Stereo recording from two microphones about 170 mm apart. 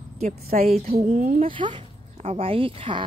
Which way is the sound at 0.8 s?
40° right (ahead or behind).